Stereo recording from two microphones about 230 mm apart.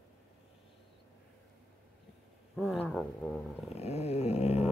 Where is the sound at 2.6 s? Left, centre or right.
Centre.